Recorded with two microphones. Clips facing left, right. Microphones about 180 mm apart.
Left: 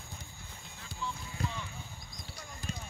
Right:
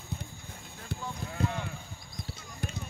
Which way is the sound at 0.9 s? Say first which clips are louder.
Right 3 dB; 60° right (ahead or behind).